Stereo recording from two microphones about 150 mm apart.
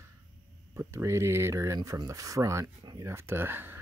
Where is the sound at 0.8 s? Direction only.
20° right (ahead or behind).